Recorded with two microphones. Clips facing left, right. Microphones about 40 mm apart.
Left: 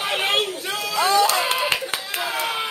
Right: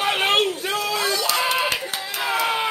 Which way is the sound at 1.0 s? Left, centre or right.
Left.